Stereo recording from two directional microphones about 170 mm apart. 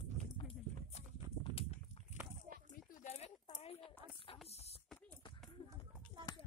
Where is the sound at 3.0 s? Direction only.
40° left (ahead or behind).